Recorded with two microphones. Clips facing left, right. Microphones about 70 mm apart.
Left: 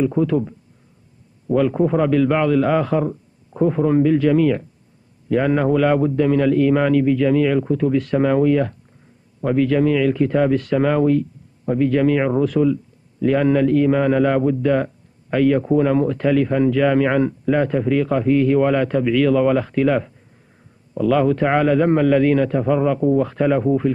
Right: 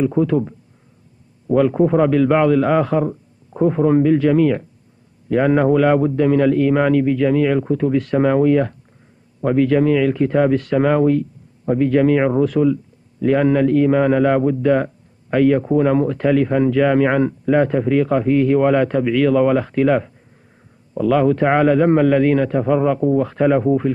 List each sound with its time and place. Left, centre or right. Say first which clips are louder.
0.3 s a man's voice: right 1 dB; right
1.7 s a man's voice: right 2 dB; centre
2.0 s a man's voice: right 3 dB; right